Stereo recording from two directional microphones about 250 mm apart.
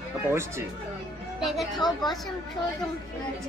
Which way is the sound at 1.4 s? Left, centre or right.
Centre.